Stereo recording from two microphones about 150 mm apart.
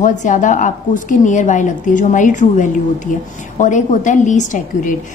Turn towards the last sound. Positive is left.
turn(degrees=60)  # may be behind; listen again after turning